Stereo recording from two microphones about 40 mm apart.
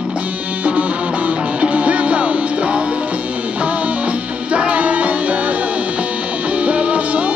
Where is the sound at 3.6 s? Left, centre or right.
Right.